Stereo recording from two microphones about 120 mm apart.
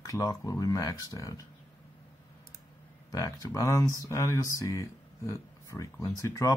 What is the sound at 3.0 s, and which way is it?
Speech, 30° left (ahead or behind).